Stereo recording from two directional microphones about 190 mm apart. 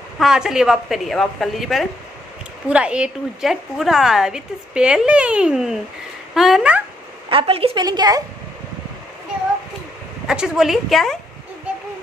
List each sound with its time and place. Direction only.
0.2 s a woman's voice: 5° right (ahead or behind)
7.2 s a woman's voice: 30° right (ahead or behind)
10.2 s a woman's voice: 5° right (ahead or behind)